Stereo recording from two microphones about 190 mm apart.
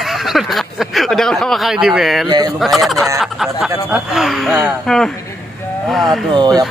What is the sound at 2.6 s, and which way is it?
Speech, centre (ahead or behind).